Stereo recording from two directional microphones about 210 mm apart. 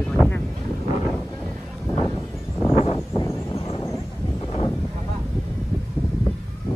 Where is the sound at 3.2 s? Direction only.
15° left (ahead or behind).